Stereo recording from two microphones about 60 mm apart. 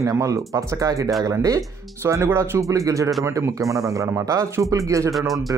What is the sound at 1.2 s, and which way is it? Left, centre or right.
Speech, right.